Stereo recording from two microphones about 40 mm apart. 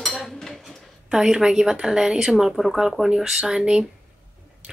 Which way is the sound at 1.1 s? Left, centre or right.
Centre.